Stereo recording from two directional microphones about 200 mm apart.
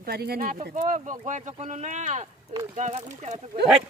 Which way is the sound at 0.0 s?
50° right (ahead or behind).